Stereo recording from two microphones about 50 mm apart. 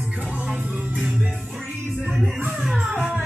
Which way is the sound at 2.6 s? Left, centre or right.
Centre.